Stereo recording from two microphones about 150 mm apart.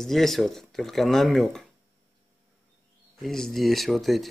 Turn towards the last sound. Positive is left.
turn(degrees=0)  # may be behind; listen again after turning